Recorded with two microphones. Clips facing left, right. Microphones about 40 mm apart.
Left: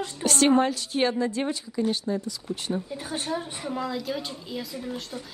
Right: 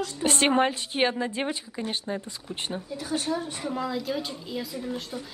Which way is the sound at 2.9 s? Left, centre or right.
Left.